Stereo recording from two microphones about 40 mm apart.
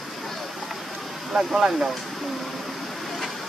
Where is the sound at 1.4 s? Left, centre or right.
Centre.